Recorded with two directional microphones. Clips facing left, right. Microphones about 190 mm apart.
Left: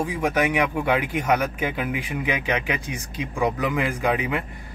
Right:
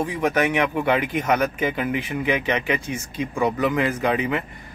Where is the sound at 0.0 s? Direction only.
10° left (ahead or behind).